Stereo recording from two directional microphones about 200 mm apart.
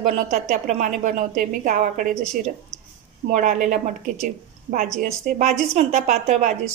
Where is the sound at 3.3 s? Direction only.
40° right (ahead or behind).